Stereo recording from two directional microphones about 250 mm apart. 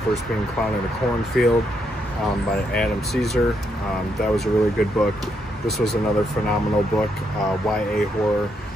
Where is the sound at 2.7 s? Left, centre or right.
Centre.